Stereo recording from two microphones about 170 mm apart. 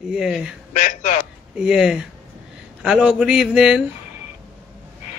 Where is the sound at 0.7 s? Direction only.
50° left (ahead or behind).